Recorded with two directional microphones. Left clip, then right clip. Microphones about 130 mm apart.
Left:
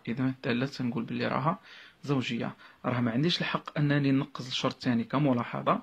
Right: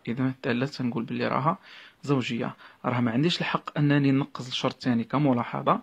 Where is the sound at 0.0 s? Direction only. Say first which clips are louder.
Right 3 dB; 35° right (ahead or behind).